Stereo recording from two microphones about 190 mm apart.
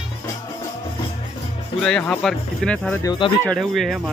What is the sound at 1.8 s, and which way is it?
Speech, 5° left (ahead or behind).